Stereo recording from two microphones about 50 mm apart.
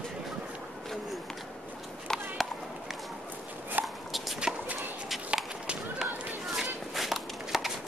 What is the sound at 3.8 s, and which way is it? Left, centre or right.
Walk, right.